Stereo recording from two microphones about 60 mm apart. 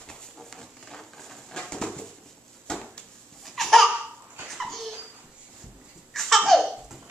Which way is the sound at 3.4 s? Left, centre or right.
Centre.